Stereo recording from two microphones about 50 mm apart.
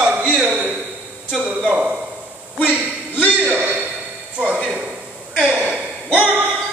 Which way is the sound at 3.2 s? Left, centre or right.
Right.